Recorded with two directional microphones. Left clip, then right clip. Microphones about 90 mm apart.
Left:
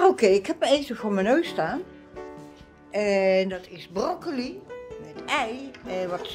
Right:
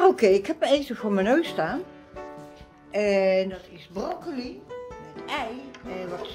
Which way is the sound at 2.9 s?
20° left (ahead or behind).